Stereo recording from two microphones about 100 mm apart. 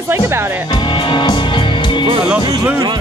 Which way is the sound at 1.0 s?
50° left (ahead or behind).